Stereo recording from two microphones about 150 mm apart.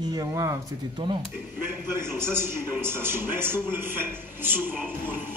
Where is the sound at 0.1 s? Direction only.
25° right (ahead or behind).